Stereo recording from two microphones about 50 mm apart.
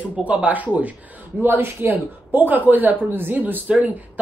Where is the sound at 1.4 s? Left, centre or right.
Right.